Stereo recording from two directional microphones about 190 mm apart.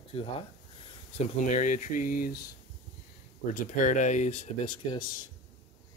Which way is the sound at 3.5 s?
40° left (ahead or behind).